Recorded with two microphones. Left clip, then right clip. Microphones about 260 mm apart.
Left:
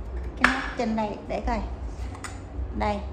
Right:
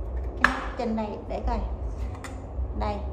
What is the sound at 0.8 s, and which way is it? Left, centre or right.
Speech, left.